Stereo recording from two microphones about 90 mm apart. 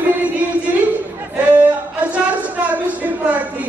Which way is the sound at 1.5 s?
15° right (ahead or behind).